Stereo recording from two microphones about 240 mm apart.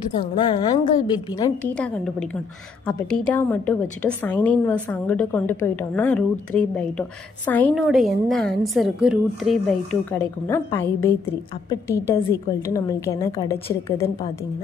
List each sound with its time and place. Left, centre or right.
0.2 s a woman's voice: centre
1.6 s a woman's voice: centre
3.3 s a woman's voice: centre